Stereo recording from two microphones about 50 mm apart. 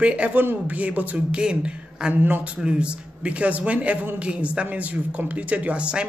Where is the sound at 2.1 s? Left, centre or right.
Right.